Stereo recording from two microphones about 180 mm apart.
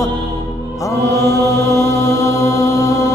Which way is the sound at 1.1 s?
15° left (ahead or behind).